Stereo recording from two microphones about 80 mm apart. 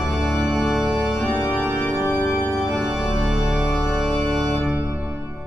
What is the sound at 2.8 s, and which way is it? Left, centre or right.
Organ, centre.